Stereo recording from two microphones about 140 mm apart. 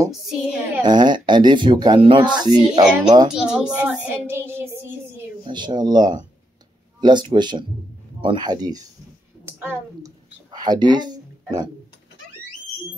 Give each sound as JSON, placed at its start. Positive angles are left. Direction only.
{"t": 0.1, "sound": "child singing", "side_deg": 0}
{"t": 0.8, "sound": "speech", "side_deg": -30}
{"t": 3.3, "sound": "speech", "side_deg": -5}
{"t": 5.4, "sound": "speech", "side_deg": -30}
{"t": 9.4, "sound": "a woman's voice", "side_deg": -15}
{"t": 10.5, "sound": "speech", "side_deg": -30}